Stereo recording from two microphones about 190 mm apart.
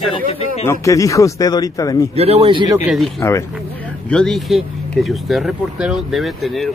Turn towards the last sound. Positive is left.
turn(degrees=0)  # may be behind; listen again after turning